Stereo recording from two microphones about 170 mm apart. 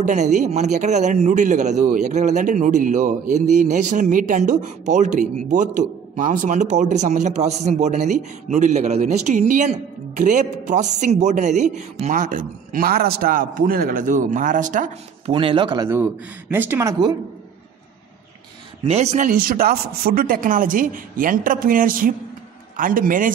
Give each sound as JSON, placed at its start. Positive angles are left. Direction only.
{"t": 0.0, "sound": "speech", "side_deg": -45}
{"t": 15.3, "sound": "speech", "side_deg": -30}
{"t": 15.9, "sound": "speech", "side_deg": -10}
{"t": 18.9, "sound": "a man's voice", "side_deg": -40}